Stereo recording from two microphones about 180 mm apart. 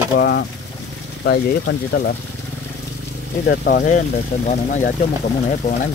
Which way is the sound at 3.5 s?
65° left (ahead or behind).